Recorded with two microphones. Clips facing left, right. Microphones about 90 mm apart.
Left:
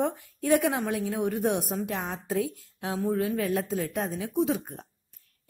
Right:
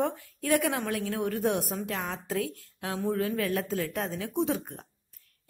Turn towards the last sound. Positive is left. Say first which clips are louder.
# left 2 dB
turn(degrees=0)  # may be behind; listen again after turning